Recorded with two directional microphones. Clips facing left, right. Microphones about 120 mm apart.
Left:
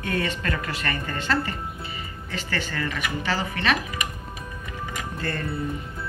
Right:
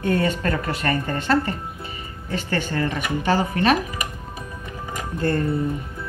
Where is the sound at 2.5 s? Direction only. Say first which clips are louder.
Right 5 dB; 45° right (ahead or behind).